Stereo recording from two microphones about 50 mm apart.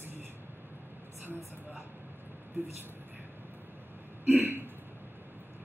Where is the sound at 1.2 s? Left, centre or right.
Right.